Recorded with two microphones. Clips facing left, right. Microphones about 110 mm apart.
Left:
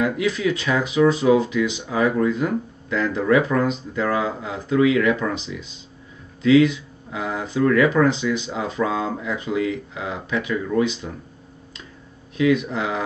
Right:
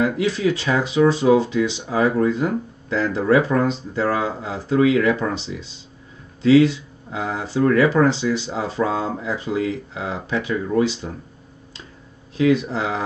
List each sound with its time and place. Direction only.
0.0 s speech: 30° right (ahead or behind)
12.4 s speech: 30° right (ahead or behind)